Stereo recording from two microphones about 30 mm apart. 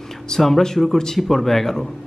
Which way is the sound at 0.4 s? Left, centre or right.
Centre.